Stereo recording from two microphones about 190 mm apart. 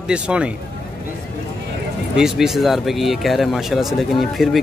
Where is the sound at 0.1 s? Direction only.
5° right (ahead or behind).